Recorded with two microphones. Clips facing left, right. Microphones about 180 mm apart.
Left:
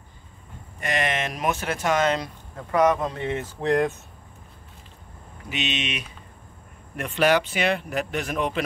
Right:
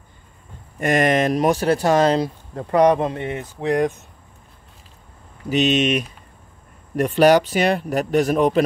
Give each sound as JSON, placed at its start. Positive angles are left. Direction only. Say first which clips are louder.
{"t": 0.7, "sound": "speech", "louder": "right 9 dB", "side_deg": -45}
{"t": 3.3, "sound": "speech", "louder": "right 1 dB", "side_deg": -15}
{"t": 5.5, "sound": "speech", "louder": "right 12 dB", "side_deg": -40}